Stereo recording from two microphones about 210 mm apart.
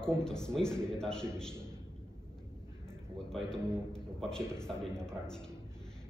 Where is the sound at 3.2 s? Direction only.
5° left (ahead or behind).